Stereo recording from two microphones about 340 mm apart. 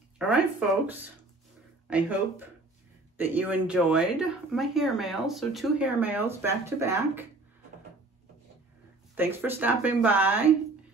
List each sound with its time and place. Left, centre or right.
0.3 s speech: centre
9.1 s speech: centre